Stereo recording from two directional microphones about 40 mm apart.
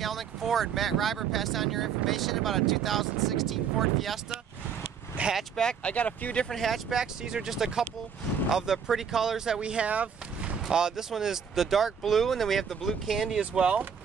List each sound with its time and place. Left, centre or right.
0.0 s speech: centre
5.2 s speech: right
5.9 s speech: left
6.5 s speech: centre
6.9 s speech: centre
9.6 s speech: right
10.7 s speech: centre
13.4 s speech: right